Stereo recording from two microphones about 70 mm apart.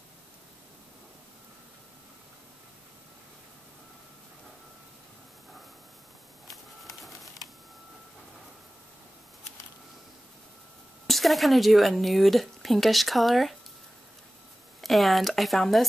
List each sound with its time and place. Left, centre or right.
11.1 s a woman's voice: centre
14.8 s a woman's voice: centre